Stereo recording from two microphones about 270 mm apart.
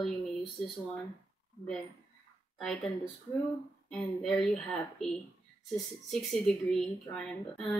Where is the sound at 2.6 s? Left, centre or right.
Centre.